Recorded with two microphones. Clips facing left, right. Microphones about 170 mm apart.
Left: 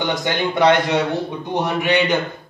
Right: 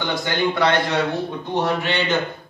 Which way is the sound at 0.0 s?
20° left (ahead or behind).